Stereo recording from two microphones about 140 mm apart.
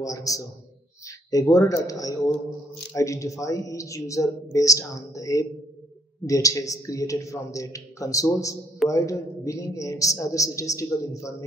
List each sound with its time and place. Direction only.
0.0 s a man's voice: 25° left (ahead or behind)